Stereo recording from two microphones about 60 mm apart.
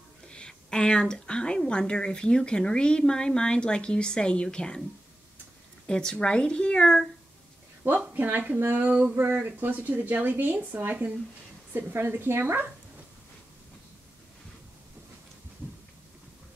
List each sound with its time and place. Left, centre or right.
0.3 s a woman's voice: centre
5.9 s a woman's voice: centre
8.0 s speech: right